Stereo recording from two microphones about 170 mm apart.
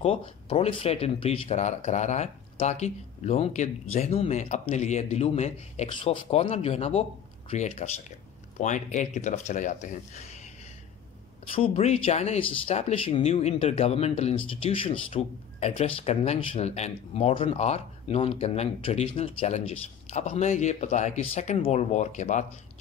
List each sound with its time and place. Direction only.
0.0 s speech: 35° left (ahead or behind)
11.5 s speech: 35° left (ahead or behind)